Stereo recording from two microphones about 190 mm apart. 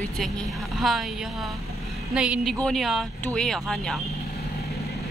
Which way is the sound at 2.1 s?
5° right (ahead or behind).